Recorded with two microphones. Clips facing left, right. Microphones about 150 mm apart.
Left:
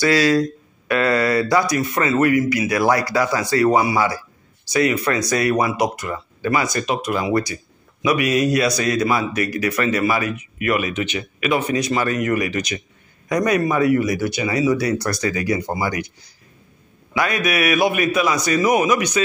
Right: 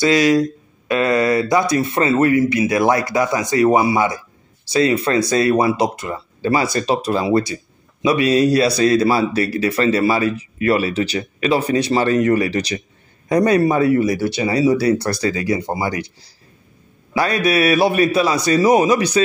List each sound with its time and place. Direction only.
0.0 s a man's voice: 20° right (ahead or behind)